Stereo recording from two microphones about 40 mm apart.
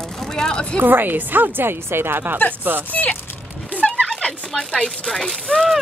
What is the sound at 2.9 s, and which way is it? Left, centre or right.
Speech, left.